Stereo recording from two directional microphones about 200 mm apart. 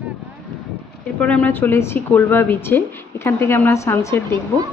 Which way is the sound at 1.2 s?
5° left (ahead or behind).